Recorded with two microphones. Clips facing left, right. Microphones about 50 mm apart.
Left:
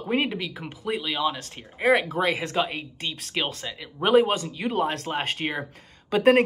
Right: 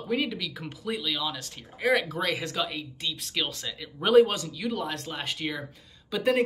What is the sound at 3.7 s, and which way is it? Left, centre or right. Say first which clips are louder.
Speech: left 1 dB; left.